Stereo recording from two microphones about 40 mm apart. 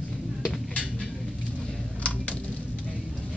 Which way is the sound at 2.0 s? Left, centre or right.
Left.